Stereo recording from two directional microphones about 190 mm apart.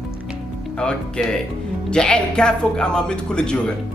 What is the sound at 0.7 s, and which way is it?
Speech, 5° left (ahead or behind).